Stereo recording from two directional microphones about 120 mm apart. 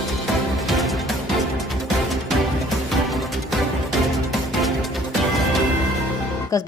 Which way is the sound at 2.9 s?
Centre (ahead or behind).